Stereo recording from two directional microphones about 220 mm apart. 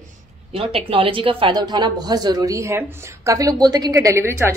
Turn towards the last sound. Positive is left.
turn(degrees=-10)  # may be behind; listen again after turning